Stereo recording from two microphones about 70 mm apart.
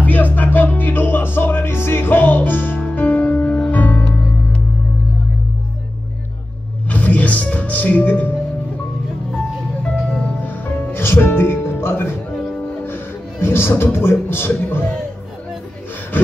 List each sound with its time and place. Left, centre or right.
0.0 s music: left
6.9 s music: left
10.4 s music: left